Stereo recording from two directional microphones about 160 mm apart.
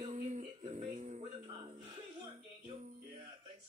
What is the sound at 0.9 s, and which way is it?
Music, 45° right (ahead or behind).